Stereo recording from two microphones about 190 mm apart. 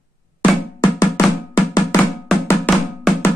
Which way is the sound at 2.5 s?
10° left (ahead or behind).